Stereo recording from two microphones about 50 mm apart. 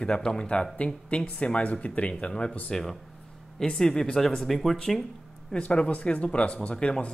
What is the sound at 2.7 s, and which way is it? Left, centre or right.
Speech, centre.